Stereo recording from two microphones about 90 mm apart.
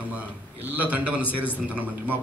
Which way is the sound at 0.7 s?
20° right (ahead or behind).